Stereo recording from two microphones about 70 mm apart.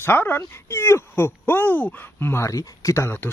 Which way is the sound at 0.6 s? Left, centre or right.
Left.